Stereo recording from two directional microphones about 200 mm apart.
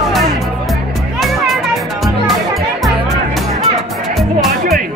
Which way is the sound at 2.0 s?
Centre (ahead or behind).